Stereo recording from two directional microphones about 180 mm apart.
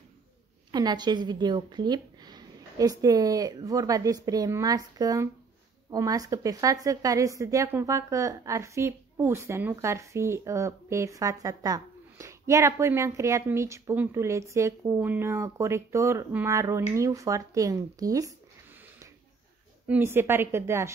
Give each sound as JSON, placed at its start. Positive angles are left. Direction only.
{"t": 0.7, "sound": "a woman's voice", "side_deg": -25}
{"t": 19.9, "sound": "a woman's voice", "side_deg": -15}